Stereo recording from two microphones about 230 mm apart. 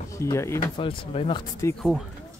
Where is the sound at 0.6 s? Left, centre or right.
Left.